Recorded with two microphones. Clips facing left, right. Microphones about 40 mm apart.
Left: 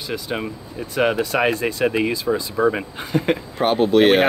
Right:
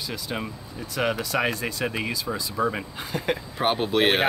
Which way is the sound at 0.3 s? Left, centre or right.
Left.